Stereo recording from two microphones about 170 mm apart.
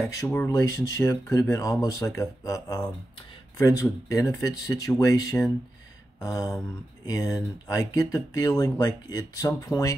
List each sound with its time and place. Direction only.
0.0 s speech: 15° left (ahead or behind)
6.1 s a sound: 20° left (ahead or behind)
7.1 s speech: 20° left (ahead or behind)